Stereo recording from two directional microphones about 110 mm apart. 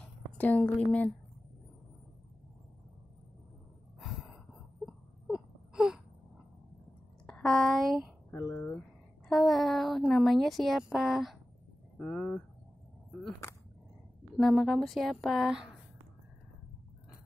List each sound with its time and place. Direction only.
0.4 s a woman's voice: 15° left (ahead or behind)
4.0 s gasp: centre (ahead or behind)
4.8 s wail: 5° right (ahead or behind)
7.2 s a woman's voice: 5° left (ahead or behind)
8.3 s a woman's voice: 20° left (ahead or behind)
9.3 s a woman's voice: centre (ahead or behind)
12.0 s a woman's voice: 10° left (ahead or behind)
14.4 s a woman's voice: centre (ahead or behind)